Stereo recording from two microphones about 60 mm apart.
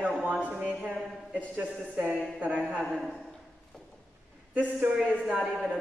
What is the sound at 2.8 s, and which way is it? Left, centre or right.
Speech, centre.